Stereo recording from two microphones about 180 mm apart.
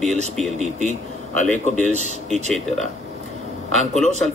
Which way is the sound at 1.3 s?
45° left (ahead or behind).